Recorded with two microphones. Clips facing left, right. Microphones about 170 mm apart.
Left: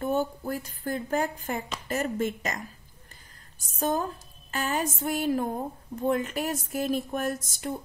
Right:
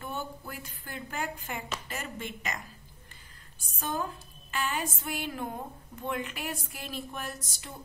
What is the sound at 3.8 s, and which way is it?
A woman's voice, 40° left (ahead or behind).